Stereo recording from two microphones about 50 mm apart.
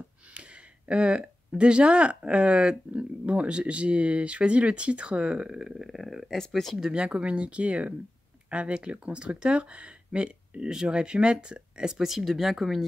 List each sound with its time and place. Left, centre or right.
0.3 s speech: right; by 6.8 s centre
6.8 s speech: centre
12.0 s speech: centre